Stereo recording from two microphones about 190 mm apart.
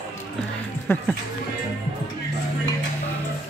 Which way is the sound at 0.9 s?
10° left (ahead or behind).